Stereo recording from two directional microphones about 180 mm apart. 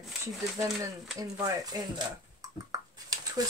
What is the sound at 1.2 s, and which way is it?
Speech, 20° right (ahead or behind).